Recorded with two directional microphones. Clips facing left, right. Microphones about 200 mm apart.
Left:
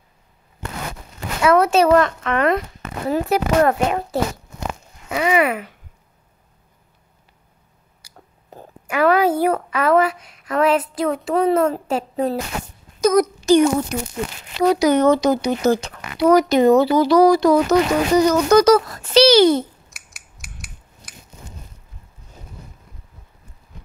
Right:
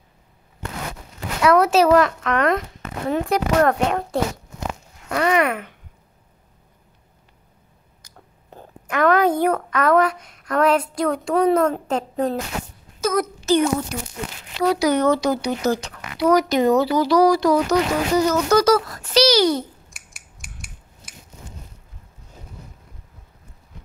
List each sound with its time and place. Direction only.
1.4 s a child's voice: centre (ahead or behind)
8.0 s a sound: 10° left (ahead or behind)
8.5 s a woman's voice: 10° left (ahead or behind); by 19.6 s 25° left (ahead or behind)
19.9 s cutlery: centre (ahead or behind)